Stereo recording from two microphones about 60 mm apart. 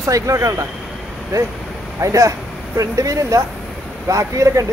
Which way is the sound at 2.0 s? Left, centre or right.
Right.